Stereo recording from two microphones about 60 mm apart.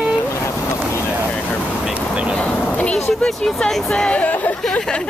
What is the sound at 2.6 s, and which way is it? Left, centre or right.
Speech, left.